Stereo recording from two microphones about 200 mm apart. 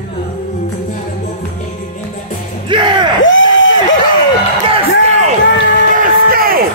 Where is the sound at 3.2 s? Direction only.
70° left (ahead or behind).